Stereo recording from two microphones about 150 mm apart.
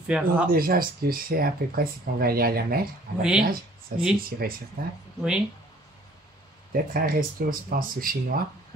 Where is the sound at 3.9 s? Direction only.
70° right (ahead or behind).